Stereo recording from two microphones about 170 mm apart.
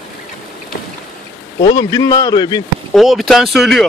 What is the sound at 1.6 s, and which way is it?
A man's voice, 20° left (ahead or behind).